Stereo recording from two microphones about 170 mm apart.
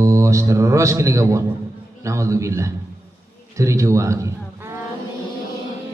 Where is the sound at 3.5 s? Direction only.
20° right (ahead or behind).